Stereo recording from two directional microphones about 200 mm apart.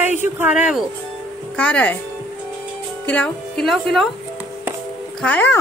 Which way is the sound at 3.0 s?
5° left (ahead or behind).